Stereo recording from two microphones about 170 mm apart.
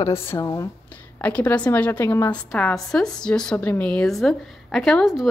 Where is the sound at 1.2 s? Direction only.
10° left (ahead or behind).